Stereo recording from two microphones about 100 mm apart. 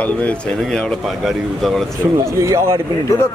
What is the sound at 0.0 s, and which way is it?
Speech, 10° left (ahead or behind).